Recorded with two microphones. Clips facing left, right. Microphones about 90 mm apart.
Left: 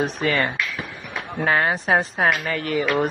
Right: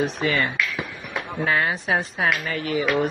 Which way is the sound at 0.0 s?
45° left (ahead or behind).